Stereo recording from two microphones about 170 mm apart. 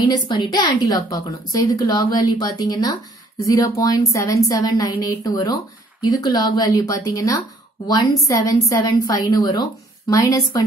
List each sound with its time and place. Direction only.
0.0 s a woman's voice: 25° left (ahead or behind)